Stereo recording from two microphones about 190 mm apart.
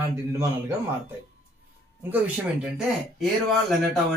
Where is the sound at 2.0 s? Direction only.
10° right (ahead or behind).